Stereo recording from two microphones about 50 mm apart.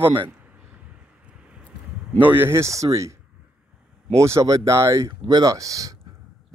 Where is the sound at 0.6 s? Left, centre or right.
Right.